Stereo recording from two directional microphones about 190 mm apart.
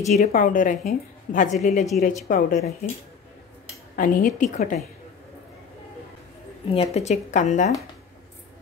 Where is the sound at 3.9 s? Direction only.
45° left (ahead or behind).